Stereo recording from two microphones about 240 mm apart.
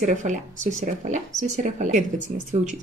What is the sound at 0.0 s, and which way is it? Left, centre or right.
A woman's voice, right.